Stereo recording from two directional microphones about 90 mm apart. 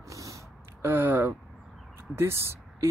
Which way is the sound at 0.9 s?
20° right (ahead or behind).